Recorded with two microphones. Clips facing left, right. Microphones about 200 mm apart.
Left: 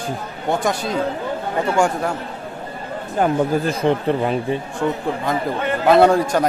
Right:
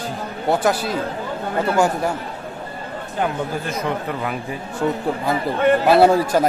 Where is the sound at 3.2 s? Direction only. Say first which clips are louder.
Left 6 dB; 30° left (ahead or behind).